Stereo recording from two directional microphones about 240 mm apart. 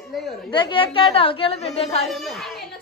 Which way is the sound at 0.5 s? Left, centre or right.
Left.